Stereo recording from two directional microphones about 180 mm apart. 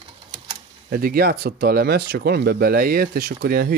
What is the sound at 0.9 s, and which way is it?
Speech, 55° right (ahead or behind).